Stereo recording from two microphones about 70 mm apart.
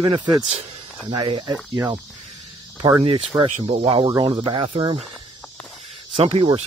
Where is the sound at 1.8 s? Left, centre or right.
Right.